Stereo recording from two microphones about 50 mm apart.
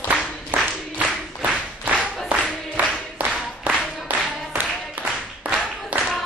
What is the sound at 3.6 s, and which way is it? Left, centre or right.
Clapping, right.